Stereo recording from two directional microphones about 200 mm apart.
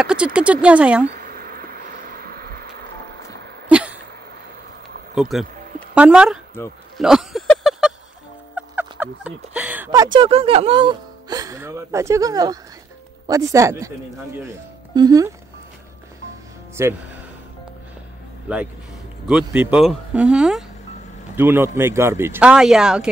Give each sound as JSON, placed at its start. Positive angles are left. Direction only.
{"t": 0.0, "sound": "speech", "side_deg": -5}
{"t": 1.0, "sound": "bee", "side_deg": -50}
{"t": 3.6, "sound": "a sound", "side_deg": -5}
{"t": 5.3, "sound": "speech", "side_deg": 0}
{"t": 7.0, "sound": "a sound", "side_deg": 0}
{"t": 8.5, "sound": "speech", "side_deg": -10}
{"t": 15.0, "sound": "speech", "side_deg": -15}
{"t": 16.8, "sound": "speech", "side_deg": -15}
{"t": 18.5, "sound": "speech", "side_deg": -5}